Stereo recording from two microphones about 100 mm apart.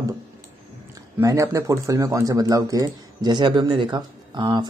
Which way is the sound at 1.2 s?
30° right (ahead or behind).